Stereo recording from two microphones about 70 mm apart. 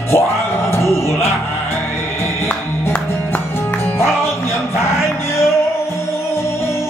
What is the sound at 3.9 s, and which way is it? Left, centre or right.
Music, left.